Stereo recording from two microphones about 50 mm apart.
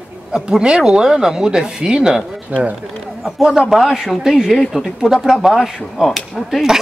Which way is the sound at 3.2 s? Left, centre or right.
Centre.